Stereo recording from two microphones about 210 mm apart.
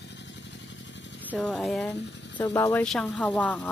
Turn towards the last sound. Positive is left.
turn(degrees=5)  # may be behind; listen again after turning